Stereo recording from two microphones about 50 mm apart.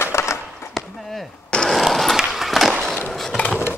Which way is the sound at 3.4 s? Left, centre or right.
Left.